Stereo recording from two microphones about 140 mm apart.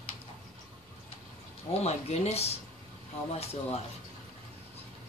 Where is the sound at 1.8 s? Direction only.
50° left (ahead or behind).